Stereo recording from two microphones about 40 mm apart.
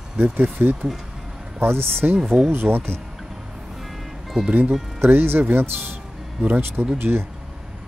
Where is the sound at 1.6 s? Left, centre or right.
Right.